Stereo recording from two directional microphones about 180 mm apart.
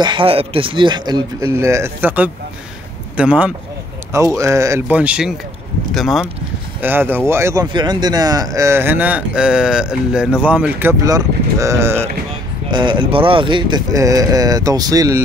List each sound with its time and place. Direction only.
0.0 s speech: 30° right (ahead or behind); by 3.5 s 5° right (ahead or behind)
4.1 s speech: 15° right (ahead or behind); by 6.2 s centre (ahead or behind)
6.8 s speech: 10° right (ahead or behind)
12.7 s speech: 25° right (ahead or behind)